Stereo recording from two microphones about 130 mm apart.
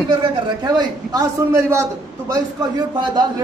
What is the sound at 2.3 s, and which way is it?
Speech, 30° right (ahead or behind).